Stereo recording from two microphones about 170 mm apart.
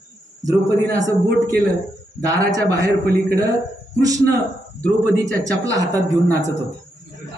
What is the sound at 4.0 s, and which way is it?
Speech, 20° right (ahead or behind).